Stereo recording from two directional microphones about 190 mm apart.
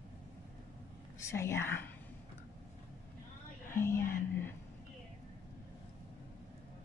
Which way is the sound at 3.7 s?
15° left (ahead or behind).